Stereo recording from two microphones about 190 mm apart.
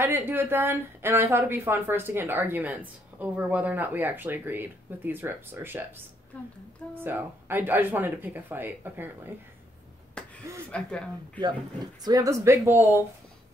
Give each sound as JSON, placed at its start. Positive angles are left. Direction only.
{"t": 0.0, "sound": "a woman's voice", "side_deg": -10}
{"t": 10.2, "sound": "a sound", "side_deg": 5}
{"t": 10.7, "sound": "a woman's voice", "side_deg": 5}
{"t": 11.4, "sound": "a woman's voice", "side_deg": -20}